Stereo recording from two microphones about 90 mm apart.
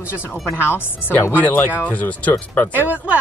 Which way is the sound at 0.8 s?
25° left (ahead or behind).